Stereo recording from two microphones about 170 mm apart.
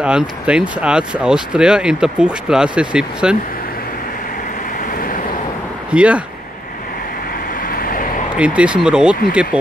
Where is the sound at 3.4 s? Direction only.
55° left (ahead or behind).